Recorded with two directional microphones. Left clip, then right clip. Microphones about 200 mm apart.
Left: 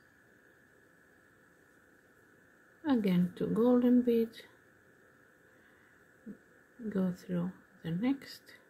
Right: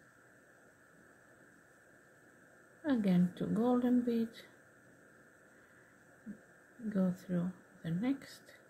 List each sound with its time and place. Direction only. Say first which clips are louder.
2.8 s speech: left 2 dB; 15° left (ahead or behind)
6.9 s speech: left 1 dB; 15° left (ahead or behind)